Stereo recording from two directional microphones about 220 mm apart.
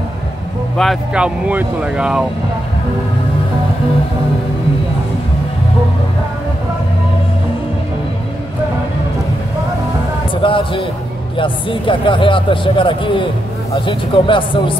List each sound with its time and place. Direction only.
0.7 s speech: centre (ahead or behind)
10.3 s speech: 25° left (ahead or behind)